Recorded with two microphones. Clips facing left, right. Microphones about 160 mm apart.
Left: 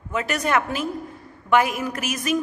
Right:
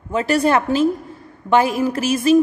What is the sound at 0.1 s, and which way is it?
A woman's voice, 30° right (ahead or behind).